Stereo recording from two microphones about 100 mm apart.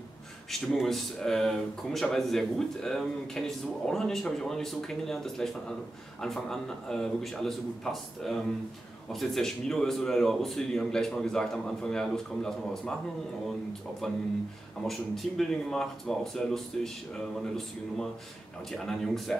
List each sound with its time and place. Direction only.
0.5 s speech: centre (ahead or behind)
14.0 s speech: 5° left (ahead or behind)